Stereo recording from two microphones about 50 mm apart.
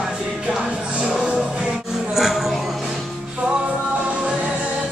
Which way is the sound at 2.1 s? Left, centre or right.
Centre.